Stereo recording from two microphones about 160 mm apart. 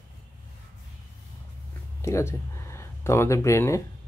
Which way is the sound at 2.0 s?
15° left (ahead or behind).